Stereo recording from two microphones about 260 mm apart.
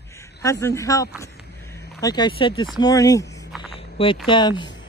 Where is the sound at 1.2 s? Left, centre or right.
Centre.